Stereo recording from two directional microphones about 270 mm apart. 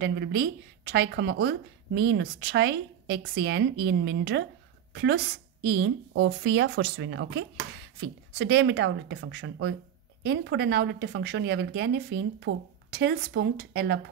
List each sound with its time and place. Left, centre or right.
0.0 s a woman's voice: right